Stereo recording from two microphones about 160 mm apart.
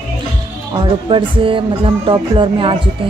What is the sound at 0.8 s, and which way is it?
Music, 35° right (ahead or behind).